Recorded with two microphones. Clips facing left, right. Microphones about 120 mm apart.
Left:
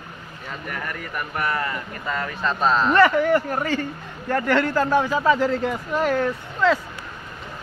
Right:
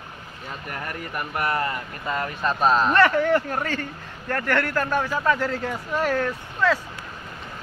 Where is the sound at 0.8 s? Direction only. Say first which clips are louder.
Left 1 dB; 30° right (ahead or behind).